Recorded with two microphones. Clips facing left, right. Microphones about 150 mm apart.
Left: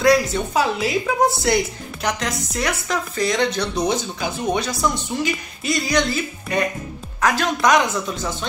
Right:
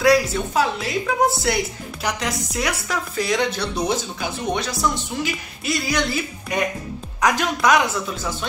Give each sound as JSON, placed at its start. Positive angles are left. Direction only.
{"t": 0.0, "sound": "speech", "side_deg": -5}
{"t": 0.7, "sound": "a woman's voice", "side_deg": 5}
{"t": 7.6, "sound": "speech", "side_deg": -5}